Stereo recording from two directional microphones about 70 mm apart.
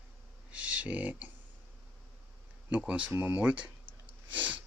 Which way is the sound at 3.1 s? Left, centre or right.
Right.